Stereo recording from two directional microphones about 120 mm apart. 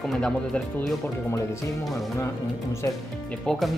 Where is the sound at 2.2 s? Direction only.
20° left (ahead or behind).